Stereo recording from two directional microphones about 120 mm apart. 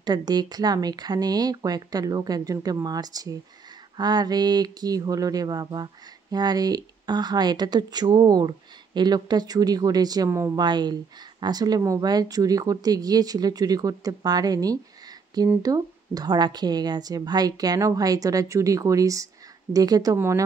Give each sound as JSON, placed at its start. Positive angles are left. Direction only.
{"t": 0.0, "sound": "speech", "side_deg": -35}
{"t": 10.6, "sound": "a woman's voice", "side_deg": -35}